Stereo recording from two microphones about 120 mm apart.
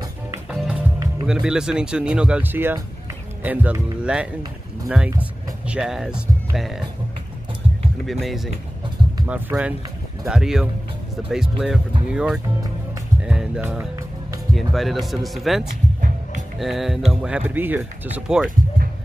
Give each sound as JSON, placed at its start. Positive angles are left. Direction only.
{"t": 0.5, "sound": "music", "side_deg": -10}
{"t": 1.2, "sound": "speech", "side_deg": -5}
{"t": 8.1, "sound": "speech", "side_deg": 0}
{"t": 9.2, "sound": "speech", "side_deg": -10}
{"t": 13.2, "sound": "music", "side_deg": -5}
{"t": 14.5, "sound": "speech", "side_deg": 0}